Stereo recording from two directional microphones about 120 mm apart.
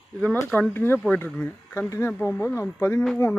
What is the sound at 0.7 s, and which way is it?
Speech, 20° left (ahead or behind).